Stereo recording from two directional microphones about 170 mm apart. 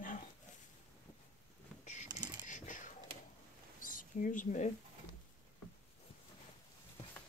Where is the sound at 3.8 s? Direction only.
50° left (ahead or behind).